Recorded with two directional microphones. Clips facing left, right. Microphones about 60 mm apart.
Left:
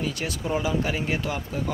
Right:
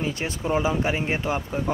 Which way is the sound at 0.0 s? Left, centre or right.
Right.